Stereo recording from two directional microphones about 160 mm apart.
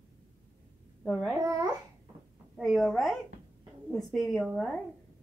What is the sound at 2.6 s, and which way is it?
A woman's voice, centre (ahead or behind).